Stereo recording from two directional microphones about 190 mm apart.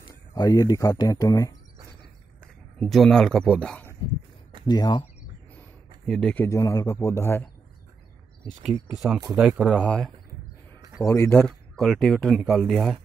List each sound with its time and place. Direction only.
0.1 s speech: 20° left (ahead or behind)
2.8 s speech: centre (ahead or behind)
4.6 s speech: 20° left (ahead or behind)
5.6 s a sound: 5° left (ahead or behind)
6.4 s a man's voice: 15° left (ahead or behind)
8.9 s a man's voice: centre (ahead or behind)
11.4 s speech: centre (ahead or behind)